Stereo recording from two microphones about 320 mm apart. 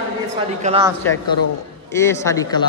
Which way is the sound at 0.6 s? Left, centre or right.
Centre.